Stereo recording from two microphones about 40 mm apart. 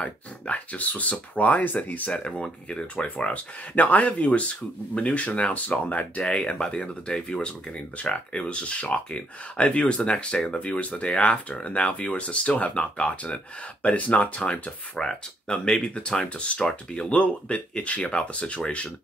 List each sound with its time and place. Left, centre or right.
0.0 s a sound: left
1.3 s speech: left
2.4 s speech: left
3.7 s speech: left
14.5 s speech: left
17.2 s speech: left